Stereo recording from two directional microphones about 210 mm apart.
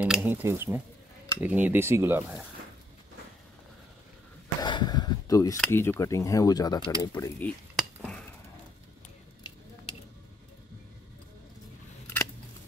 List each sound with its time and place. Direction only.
0.0 s speech: 5° right (ahead or behind)
4.6 s a sound: 20° left (ahead or behind)
5.6 s speech: 10° left (ahead or behind)
7.7 s dishes: 5° left (ahead or behind)